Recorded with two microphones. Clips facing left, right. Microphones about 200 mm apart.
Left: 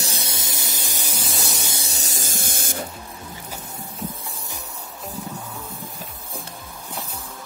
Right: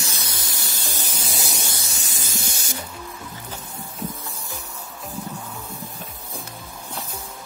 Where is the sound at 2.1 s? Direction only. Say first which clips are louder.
Even; 50° left (ahead or behind).